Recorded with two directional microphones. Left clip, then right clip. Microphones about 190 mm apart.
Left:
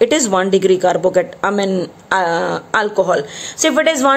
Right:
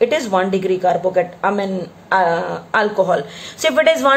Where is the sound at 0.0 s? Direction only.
40° left (ahead or behind).